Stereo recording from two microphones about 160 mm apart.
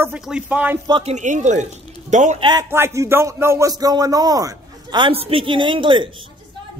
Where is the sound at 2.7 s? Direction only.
15° right (ahead or behind).